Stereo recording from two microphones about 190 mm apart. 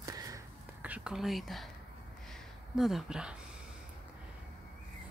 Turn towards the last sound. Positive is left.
turn(degrees=-5)  # may be behind; listen again after turning